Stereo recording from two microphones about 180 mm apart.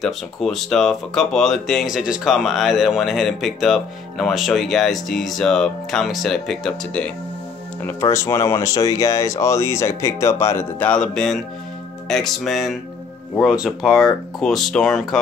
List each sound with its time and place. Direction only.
0.0 s speech: centre (ahead or behind)
7.8 s speech: 15° left (ahead or behind)